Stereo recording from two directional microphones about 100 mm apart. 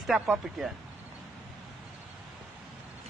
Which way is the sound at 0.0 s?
5° right (ahead or behind).